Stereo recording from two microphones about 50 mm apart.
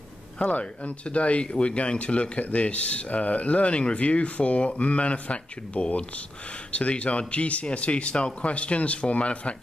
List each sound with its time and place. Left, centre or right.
0.4 s speech: left